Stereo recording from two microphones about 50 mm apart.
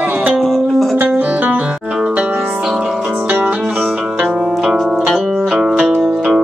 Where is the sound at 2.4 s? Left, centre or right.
Centre.